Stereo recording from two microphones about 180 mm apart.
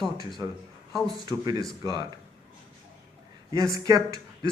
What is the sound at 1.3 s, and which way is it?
Speech, 20° right (ahead or behind).